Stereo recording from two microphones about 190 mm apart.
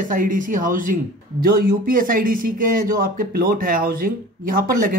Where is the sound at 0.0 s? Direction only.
45° right (ahead or behind).